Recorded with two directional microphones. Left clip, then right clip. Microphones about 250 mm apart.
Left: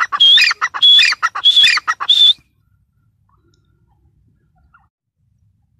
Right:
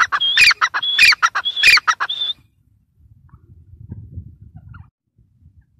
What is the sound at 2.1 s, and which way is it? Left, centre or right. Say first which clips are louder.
Bird: left 13 dB; centre.